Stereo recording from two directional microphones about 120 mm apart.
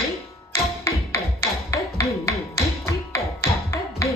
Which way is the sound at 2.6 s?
25° left (ahead or behind).